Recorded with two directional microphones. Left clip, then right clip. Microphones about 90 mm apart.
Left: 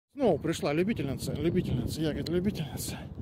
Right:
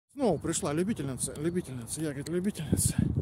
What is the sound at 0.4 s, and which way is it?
Speech, 35° right (ahead or behind).